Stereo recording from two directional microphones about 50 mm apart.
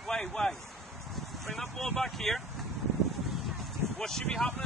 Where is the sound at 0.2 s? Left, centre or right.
Centre.